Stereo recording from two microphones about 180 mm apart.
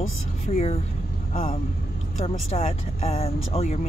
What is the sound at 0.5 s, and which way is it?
Speech, 35° left (ahead or behind).